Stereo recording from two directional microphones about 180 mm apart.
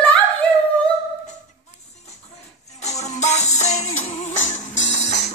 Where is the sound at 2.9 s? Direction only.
40° left (ahead or behind).